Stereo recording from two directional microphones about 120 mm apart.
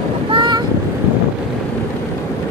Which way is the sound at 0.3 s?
40° right (ahead or behind).